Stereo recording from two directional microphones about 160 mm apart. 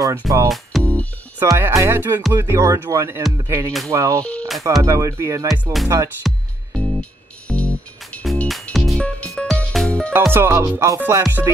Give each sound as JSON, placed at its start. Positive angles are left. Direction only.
{"t": 0.5, "sound": "music", "side_deg": 5}
{"t": 1.4, "sound": "speech", "side_deg": -15}
{"t": 4.2, "sound": "speech", "side_deg": 5}
{"t": 4.8, "sound": "speech", "side_deg": -20}
{"t": 5.5, "sound": "speech", "side_deg": 0}
{"t": 6.2, "sound": "music", "side_deg": 5}
{"t": 10.3, "sound": "music", "side_deg": -15}